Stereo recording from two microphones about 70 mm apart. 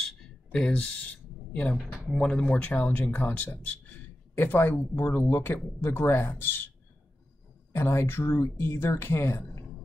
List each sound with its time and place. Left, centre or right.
0.0 s a sound: centre
2.1 s a man's voice: centre; by 6.7 s left
7.7 s speech: left